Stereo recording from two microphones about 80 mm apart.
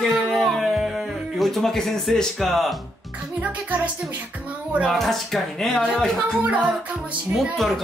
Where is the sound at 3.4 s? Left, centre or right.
Centre.